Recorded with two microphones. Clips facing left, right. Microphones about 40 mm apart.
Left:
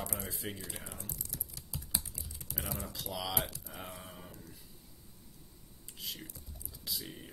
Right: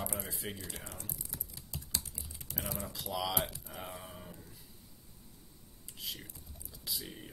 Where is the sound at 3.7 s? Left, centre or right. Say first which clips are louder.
Right 1 dB; centre.